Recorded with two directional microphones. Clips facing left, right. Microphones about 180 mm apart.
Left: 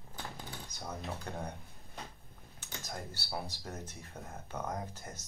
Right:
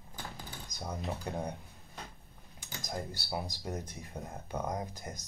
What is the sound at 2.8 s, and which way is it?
Speech, 15° right (ahead or behind).